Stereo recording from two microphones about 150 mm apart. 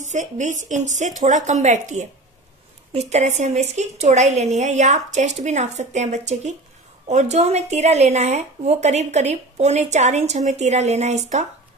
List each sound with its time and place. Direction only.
0.0 s speech: 55° right (ahead or behind)